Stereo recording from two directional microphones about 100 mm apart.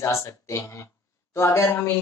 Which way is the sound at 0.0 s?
30° left (ahead or behind).